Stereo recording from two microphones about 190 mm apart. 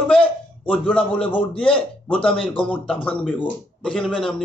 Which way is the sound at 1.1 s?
25° left (ahead or behind).